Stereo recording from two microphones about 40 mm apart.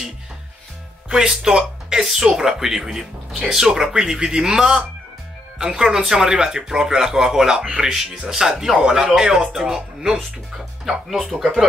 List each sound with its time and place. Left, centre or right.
1.0 s music: centre
1.5 s speech: centre